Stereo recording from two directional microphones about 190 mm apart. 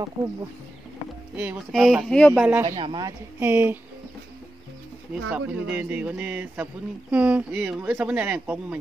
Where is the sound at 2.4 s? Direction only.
10° right (ahead or behind).